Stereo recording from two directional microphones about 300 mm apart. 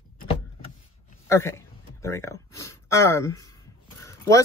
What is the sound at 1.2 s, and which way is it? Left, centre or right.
Speech, centre.